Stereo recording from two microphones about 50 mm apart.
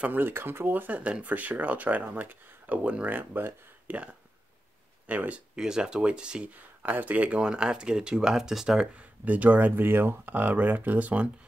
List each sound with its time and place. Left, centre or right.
0.0 s speech: right
0.9 s speech: right
5.6 s speech: centre
6.8 s speech: right
7.3 s speech: centre
9.2 s speech: right
10.3 s speech: right